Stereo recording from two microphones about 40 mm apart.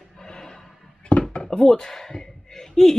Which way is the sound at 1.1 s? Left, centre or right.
Left.